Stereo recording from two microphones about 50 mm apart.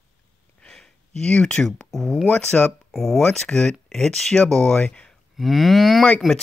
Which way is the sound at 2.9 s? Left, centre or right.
Centre.